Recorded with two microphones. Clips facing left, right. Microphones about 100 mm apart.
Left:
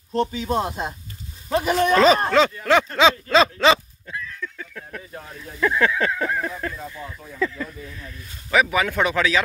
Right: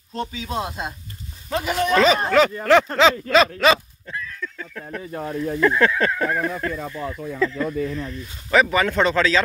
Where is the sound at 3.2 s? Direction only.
25° left (ahead or behind).